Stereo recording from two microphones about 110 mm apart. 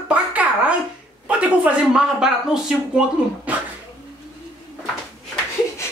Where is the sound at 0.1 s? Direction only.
15° right (ahead or behind).